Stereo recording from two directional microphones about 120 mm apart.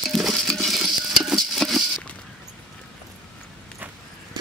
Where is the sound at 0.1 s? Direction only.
Centre (ahead or behind).